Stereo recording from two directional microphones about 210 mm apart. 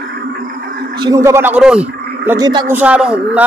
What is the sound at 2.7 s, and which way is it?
Speech, 5° right (ahead or behind).